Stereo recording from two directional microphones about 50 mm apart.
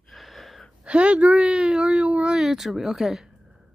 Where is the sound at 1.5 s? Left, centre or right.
Centre.